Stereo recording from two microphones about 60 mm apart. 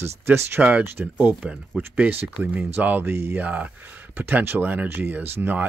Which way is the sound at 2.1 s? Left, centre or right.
Right.